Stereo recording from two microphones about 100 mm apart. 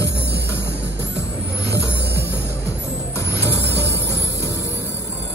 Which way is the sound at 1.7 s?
30° left (ahead or behind).